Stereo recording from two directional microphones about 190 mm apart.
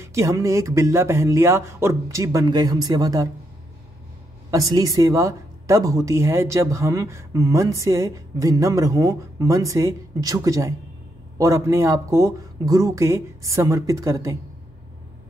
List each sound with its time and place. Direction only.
0.0 s speech: 15° right (ahead or behind)
4.5 s speech: 15° right (ahead or behind)